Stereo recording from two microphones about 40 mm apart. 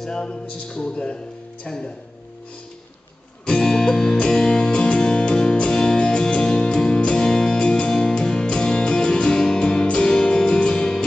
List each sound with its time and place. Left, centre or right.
0.0 s speech: centre
3.4 s music: left